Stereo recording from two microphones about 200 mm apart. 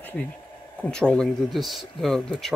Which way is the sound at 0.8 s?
5° left (ahead or behind).